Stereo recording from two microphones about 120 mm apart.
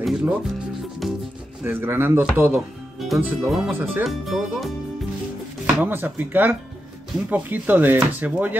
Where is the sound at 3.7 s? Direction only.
15° right (ahead or behind).